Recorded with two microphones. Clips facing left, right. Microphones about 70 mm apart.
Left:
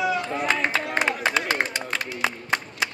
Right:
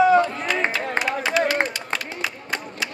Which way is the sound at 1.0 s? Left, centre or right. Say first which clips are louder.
Left 1 dB; right.